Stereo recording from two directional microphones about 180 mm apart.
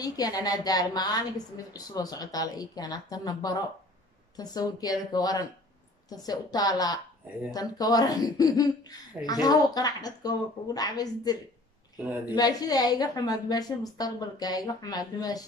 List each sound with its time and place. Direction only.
0.0 s speech: 20° left (ahead or behind)
12.4 s speech: 20° left (ahead or behind)